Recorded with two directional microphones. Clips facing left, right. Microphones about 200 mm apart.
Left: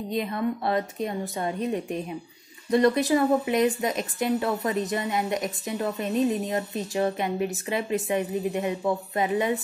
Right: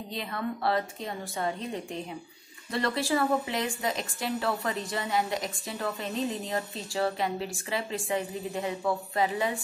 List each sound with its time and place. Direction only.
0.1 s a woman's voice: 20° left (ahead or behind)